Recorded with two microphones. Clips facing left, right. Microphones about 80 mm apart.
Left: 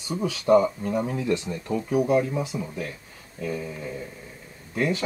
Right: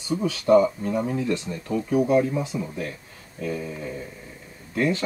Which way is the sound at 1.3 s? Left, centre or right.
Centre.